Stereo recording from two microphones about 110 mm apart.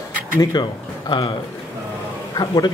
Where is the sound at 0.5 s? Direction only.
40° left (ahead or behind).